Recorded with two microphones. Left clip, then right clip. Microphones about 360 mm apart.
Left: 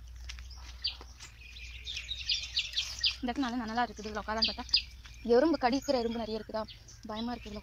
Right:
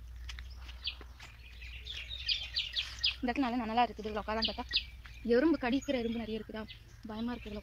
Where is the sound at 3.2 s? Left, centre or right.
Centre.